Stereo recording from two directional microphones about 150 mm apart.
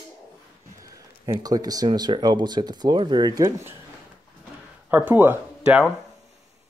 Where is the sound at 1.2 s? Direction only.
25° right (ahead or behind).